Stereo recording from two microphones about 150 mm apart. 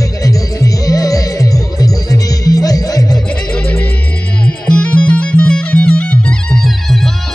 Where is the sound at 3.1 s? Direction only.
5° left (ahead or behind).